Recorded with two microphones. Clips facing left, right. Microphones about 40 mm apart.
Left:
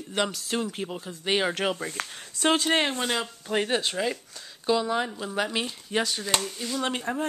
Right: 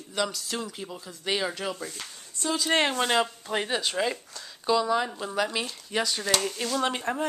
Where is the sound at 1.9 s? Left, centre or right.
Left.